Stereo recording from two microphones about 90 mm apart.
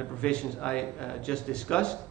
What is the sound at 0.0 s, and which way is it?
A man's voice, 10° left (ahead or behind).